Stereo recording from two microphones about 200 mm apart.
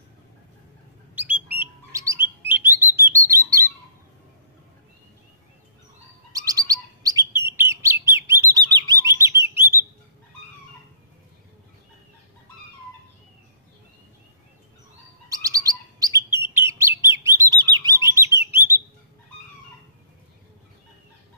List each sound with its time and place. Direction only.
1.1 s bird: 10° right (ahead or behind)
6.3 s bird: 15° right (ahead or behind)
15.2 s bird: 15° right (ahead or behind)
17.7 s chirp: 15° right (ahead or behind)
18.4 s bird: 10° right (ahead or behind)